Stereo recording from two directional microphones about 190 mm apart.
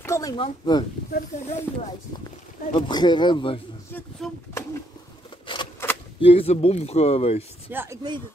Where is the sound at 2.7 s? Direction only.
25° left (ahead or behind).